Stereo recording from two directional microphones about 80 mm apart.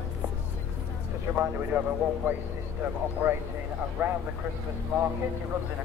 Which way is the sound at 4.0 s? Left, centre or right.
Right.